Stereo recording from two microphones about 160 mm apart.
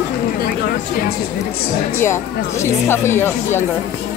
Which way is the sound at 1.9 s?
15° left (ahead or behind).